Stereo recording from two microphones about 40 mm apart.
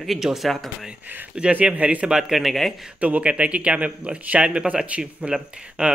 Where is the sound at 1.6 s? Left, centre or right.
Right.